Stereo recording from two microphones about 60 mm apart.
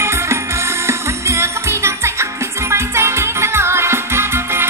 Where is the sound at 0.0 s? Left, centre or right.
Right.